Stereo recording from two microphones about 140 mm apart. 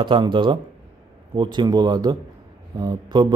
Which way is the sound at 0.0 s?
35° right (ahead or behind).